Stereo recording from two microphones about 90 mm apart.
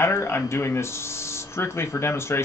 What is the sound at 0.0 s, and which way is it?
Speech, 30° left (ahead or behind).